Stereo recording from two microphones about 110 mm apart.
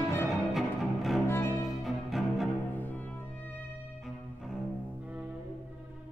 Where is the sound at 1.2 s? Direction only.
25° left (ahead or behind).